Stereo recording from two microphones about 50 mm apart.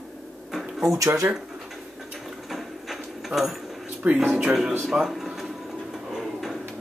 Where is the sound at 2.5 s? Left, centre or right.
Centre.